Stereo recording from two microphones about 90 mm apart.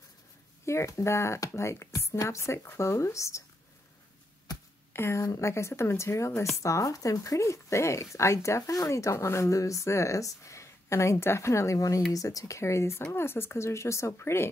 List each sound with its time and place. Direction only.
0.7 s speech: 30° left (ahead or behind)
4.9 s a woman's voice: 30° left (ahead or behind)